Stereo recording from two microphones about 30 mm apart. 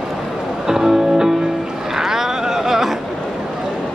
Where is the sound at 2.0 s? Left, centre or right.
Centre.